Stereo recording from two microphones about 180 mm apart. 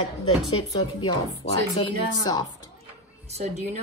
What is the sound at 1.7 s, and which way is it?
Speech, 20° left (ahead or behind).